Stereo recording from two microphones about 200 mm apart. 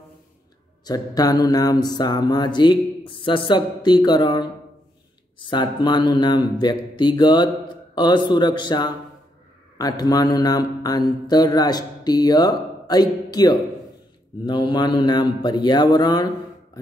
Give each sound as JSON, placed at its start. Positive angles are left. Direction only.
{"t": 0.8, "sound": "mantra", "side_deg": 20}